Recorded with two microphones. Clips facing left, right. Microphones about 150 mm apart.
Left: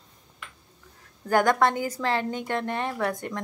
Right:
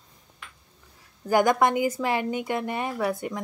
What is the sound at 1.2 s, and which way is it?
A woman's voice, 10° right (ahead or behind).